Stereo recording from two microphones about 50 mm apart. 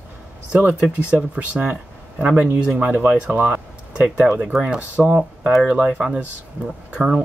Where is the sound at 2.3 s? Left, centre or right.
Right.